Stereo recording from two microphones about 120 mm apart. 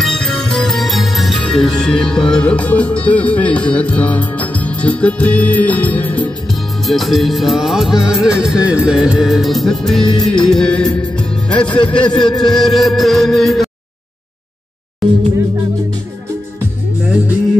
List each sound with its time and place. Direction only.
0.0 s music: 5° left (ahead or behind)
6.9 s music: centre (ahead or behind)
15.0 s music: centre (ahead or behind)